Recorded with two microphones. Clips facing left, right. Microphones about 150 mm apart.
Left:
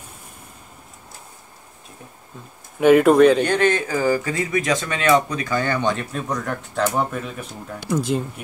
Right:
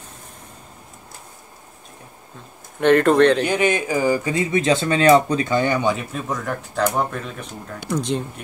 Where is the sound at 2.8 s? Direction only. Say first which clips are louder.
Left 2 dB; 5° left (ahead or behind).